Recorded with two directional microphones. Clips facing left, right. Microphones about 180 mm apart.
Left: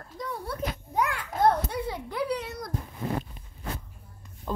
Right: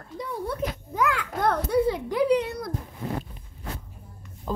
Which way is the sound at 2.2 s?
15° right (ahead or behind).